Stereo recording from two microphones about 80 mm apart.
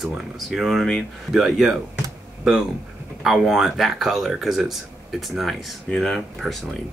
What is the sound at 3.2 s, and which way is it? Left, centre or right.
Speech, centre.